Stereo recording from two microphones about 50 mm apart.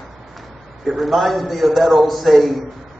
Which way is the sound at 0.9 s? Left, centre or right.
Centre.